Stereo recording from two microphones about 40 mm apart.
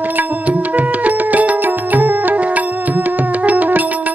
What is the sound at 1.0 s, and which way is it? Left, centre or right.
Music, right.